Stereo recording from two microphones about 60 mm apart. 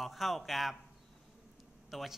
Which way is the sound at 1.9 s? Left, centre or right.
Centre.